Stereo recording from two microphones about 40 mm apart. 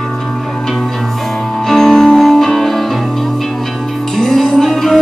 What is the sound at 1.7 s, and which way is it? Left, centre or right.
Music, centre.